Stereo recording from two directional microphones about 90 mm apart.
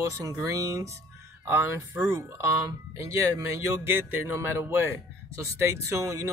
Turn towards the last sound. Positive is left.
turn(degrees=-35)  # may be behind; listen again after turning